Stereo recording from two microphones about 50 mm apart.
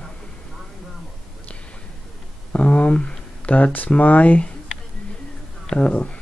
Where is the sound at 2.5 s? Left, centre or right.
Left.